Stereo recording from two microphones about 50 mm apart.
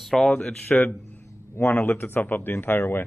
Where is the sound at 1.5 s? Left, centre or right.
Left.